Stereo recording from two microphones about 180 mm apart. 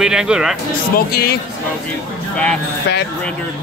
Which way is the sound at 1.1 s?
60° left (ahead or behind).